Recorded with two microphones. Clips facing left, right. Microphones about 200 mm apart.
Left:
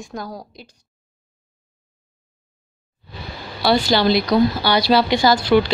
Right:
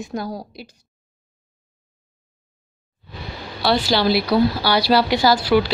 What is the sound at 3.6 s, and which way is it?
A woman's voice, centre (ahead or behind).